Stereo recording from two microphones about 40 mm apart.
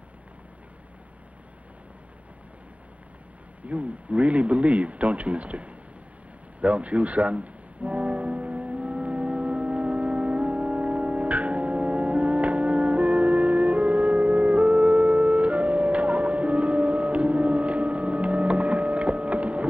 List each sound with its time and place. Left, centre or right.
3.6 s a man's voice: right
6.6 s music: right